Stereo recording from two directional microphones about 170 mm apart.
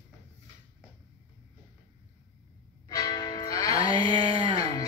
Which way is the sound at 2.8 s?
20° left (ahead or behind).